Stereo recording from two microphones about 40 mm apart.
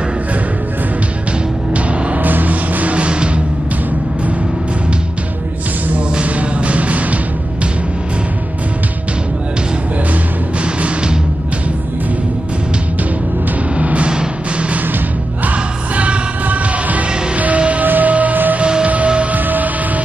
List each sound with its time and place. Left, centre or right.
2.2 s music: right
6.2 s music: right
10.6 s music: right
13.7 s music: right
17.8 s music: right
18.6 s music: right
19.3 s music: right